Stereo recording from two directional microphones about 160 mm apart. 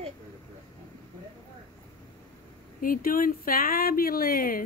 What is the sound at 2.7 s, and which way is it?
Speech, 60° left (ahead or behind).